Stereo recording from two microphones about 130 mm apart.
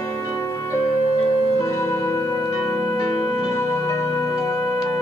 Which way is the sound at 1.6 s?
25° left (ahead or behind).